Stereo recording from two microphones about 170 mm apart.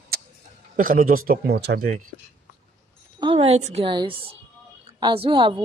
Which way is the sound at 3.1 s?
30° right (ahead or behind).